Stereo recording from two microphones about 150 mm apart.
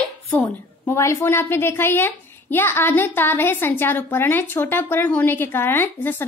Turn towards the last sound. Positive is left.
turn(degrees=15)  # may be behind; listen again after turning